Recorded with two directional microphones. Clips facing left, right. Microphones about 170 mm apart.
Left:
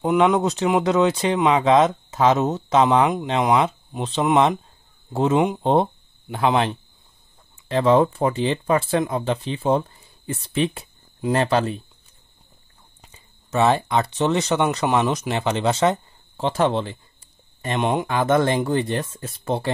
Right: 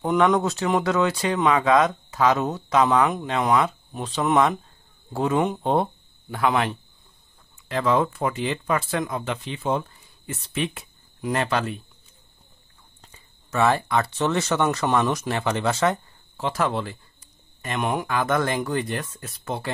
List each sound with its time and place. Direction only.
0.0 s speech: 10° left (ahead or behind); by 11.8 s 30° left (ahead or behind)
13.1 s speech: 20° left (ahead or behind)